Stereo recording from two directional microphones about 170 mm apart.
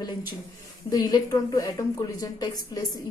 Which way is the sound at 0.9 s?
20° left (ahead or behind).